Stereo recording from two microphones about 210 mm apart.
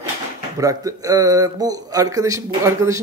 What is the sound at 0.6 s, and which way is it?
A man's voice, 15° right (ahead or behind).